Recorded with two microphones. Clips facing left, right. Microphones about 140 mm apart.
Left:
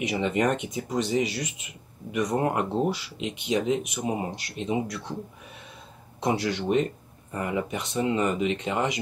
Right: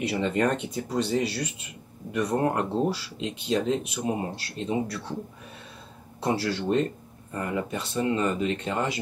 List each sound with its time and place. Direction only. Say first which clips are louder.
0.0 s speech: even; 15° left (ahead or behind)
6.2 s speech: left 1 dB; 20° left (ahead or behind)